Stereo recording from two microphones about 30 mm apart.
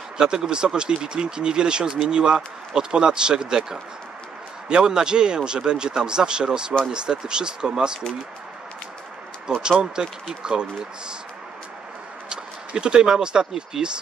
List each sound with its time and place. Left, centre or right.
0.2 s speech: right
9.6 s speech: right
12.3 s speech: right